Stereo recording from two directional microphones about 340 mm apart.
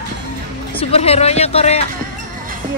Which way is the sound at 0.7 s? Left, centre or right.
Centre.